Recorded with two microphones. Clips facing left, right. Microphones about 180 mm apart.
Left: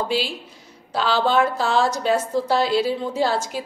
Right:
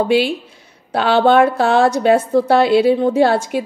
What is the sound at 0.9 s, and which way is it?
A woman's voice, 60° right (ahead or behind).